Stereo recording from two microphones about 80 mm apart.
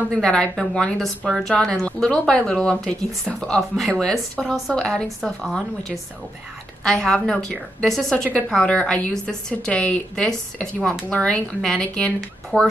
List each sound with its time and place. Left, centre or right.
0.1 s a woman's voice: centre